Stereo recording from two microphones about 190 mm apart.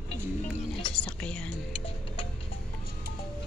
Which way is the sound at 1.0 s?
5° left (ahead or behind).